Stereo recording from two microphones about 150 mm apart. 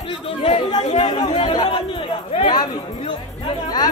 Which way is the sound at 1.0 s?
35° left (ahead or behind).